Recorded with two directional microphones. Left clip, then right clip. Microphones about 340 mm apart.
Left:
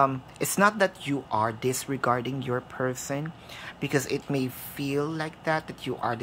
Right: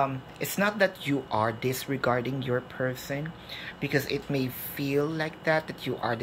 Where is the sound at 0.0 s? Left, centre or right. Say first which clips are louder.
Left 4 dB; centre.